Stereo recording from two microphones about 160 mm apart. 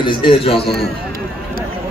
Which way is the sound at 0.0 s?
30° left (ahead or behind).